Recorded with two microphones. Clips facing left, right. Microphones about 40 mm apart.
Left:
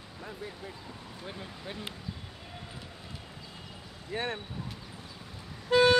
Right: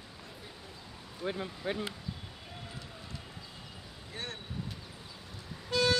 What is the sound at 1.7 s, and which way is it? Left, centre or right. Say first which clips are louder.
Speech: right 7 dB; right.